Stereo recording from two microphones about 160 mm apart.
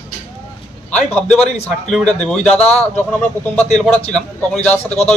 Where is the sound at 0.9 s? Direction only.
5° left (ahead or behind).